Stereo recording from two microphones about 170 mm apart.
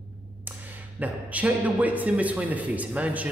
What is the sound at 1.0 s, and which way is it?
A man's voice, 10° right (ahead or behind).